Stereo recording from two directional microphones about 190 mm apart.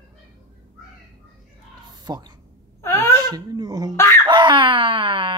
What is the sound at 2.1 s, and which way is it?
Speech, 20° right (ahead or behind).